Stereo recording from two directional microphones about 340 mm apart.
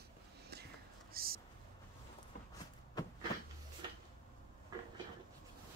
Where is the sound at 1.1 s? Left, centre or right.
Right.